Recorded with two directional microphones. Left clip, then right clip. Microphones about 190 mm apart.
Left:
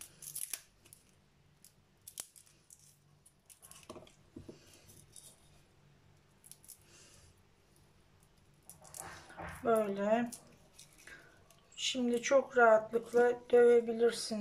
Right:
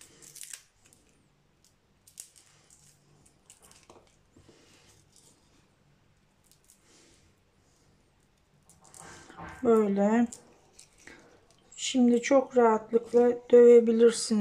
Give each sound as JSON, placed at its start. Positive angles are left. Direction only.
{"t": 9.7, "sound": "speech", "side_deg": -35}
{"t": 11.7, "sound": "speech", "side_deg": -30}